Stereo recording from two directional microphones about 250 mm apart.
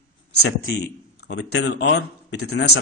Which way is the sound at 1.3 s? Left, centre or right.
Left.